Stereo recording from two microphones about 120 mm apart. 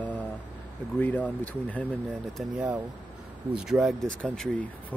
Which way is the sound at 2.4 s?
Centre (ahead or behind).